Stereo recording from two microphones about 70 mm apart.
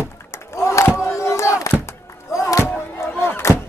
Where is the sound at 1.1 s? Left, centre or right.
Left.